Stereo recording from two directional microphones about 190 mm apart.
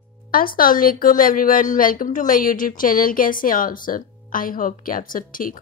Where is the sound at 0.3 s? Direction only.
50° left (ahead or behind).